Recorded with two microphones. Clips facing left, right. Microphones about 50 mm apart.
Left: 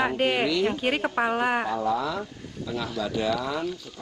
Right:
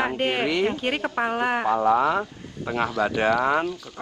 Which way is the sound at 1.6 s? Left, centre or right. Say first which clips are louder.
Right 6 dB; right.